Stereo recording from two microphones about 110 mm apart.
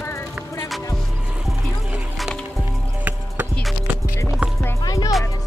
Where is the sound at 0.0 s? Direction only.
25° left (ahead or behind).